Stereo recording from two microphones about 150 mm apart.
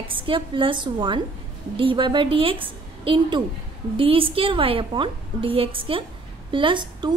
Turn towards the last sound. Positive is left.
turn(degrees=-30)  # may be behind; listen again after turning